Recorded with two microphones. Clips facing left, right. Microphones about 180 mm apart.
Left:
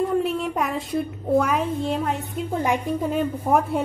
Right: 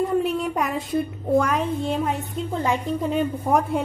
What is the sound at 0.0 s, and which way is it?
A woman's voice, centre (ahead or behind).